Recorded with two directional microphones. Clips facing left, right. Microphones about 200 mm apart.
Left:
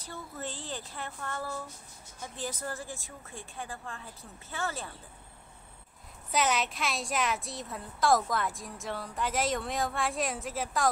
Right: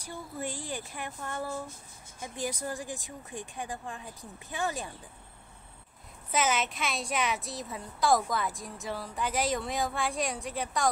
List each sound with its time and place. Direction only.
0.0 s speech: 10° right (ahead or behind)
6.3 s a woman's voice: centre (ahead or behind)